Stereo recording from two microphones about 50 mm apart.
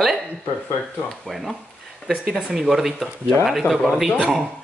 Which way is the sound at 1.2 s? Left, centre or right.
Centre.